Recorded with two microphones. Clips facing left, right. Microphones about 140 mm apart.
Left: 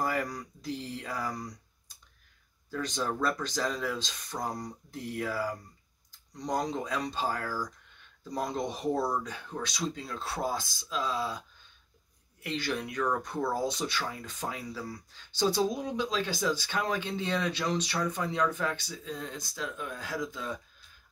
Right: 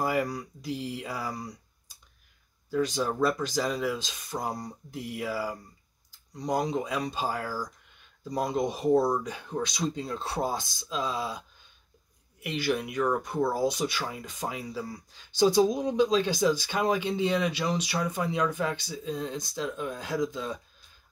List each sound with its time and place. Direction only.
0.0 s speech: 10° right (ahead or behind)
2.7 s speech: 10° right (ahead or behind)